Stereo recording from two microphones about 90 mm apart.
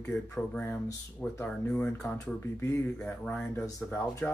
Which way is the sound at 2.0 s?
35° left (ahead or behind).